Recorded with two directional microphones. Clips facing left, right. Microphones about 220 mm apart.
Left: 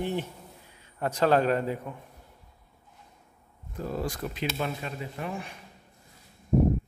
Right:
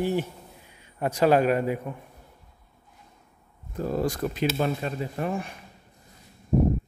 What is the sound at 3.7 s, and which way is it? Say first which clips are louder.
Speech: right 5 dB; 45° right (ahead or behind).